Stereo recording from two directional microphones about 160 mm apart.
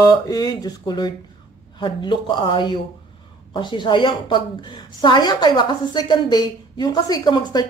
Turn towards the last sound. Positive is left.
turn(degrees=25)  # may be behind; listen again after turning